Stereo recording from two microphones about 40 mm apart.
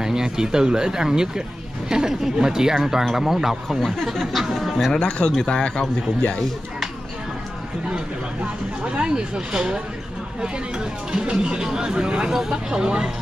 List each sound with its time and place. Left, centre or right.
0.0 s speech: centre
3.6 s speech: centre
4.9 s a man's voice: left
8.8 s speech: right
11.1 s speech: right